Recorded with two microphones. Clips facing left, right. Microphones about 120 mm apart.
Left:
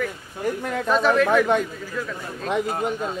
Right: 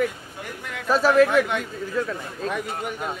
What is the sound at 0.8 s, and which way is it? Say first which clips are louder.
Speech: right 2 dB; 5° right (ahead or behind).